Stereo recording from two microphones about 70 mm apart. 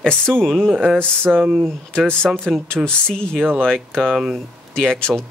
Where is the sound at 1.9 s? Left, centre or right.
Centre.